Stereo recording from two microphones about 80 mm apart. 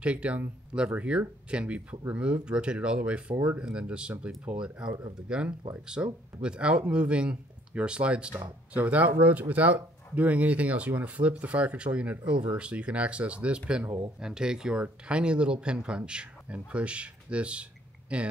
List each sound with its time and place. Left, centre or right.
0.0 s speech: centre